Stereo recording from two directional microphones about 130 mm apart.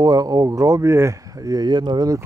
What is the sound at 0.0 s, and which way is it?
Speech, 30° right (ahead or behind).